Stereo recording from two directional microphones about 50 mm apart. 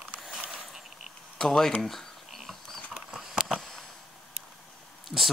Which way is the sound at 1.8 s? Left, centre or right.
Centre.